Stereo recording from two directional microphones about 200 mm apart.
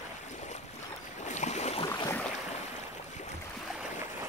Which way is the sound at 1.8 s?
10° left (ahead or behind).